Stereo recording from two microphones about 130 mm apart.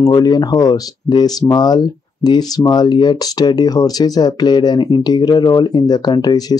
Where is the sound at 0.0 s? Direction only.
30° left (ahead or behind).